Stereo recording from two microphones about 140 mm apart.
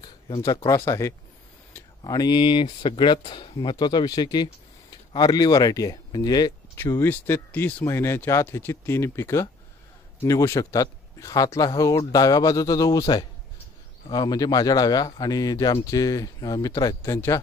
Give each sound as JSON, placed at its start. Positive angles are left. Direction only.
{"t": 0.7, "sound": "speech", "side_deg": 20}
{"t": 1.7, "sound": "a sound", "side_deg": 25}
{"t": 2.6, "sound": "speech", "side_deg": 35}